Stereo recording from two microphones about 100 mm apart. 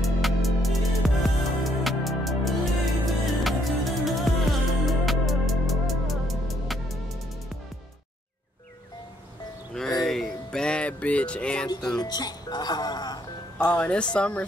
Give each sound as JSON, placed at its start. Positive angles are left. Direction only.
{"t": 0.0, "sound": "music", "side_deg": 0}
{"t": 10.0, "sound": "music", "side_deg": 5}
{"t": 11.6, "sound": "speech", "side_deg": 40}
{"t": 12.0, "sound": "music", "side_deg": 40}
{"t": 13.7, "sound": "speech", "side_deg": 10}